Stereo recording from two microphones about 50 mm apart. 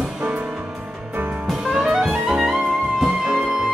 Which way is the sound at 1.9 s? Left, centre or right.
Centre.